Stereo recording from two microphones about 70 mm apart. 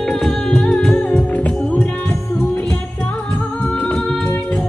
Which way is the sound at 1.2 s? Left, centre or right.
Centre.